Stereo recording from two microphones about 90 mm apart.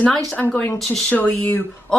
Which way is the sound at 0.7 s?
5° left (ahead or behind).